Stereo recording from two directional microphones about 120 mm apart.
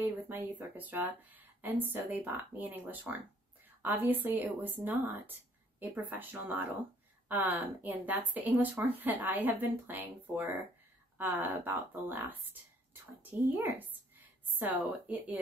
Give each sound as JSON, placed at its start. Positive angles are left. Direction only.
{"t": 0.0, "sound": "a woman's voice", "side_deg": -15}